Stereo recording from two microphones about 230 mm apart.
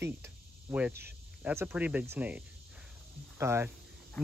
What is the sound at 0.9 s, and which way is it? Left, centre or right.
Speech, right.